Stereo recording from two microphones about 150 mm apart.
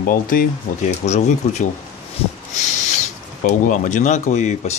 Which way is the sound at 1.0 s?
50° left (ahead or behind).